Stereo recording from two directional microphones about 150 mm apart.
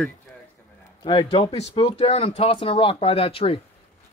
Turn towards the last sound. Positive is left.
turn(degrees=40)  # may be behind; listen again after turning